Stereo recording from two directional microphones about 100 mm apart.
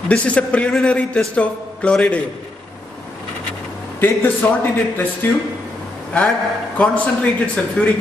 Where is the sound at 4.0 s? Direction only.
20° left (ahead or behind).